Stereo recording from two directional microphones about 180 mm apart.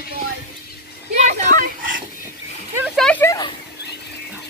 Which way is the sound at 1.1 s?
40° right (ahead or behind).